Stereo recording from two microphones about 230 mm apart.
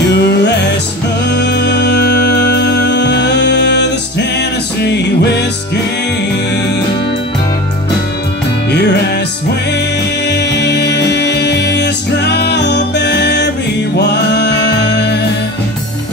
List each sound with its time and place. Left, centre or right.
0.1 s music: left
10.2 s music: left